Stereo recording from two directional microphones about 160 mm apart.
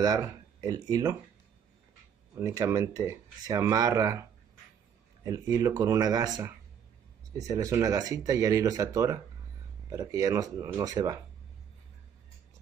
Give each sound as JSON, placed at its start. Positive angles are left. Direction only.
{"t": 0.0, "sound": "speech", "side_deg": -25}
{"t": 2.3, "sound": "speech", "side_deg": -15}